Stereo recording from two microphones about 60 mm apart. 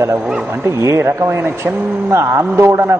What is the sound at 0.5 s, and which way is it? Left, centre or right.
A man's voice, right.